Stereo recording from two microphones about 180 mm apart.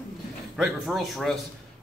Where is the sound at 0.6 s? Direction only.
Centre (ahead or behind).